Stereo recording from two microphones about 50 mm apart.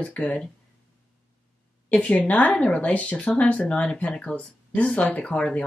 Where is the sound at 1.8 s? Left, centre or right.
Left.